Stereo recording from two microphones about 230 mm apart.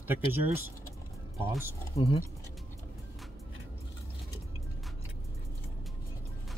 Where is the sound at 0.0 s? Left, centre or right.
Centre.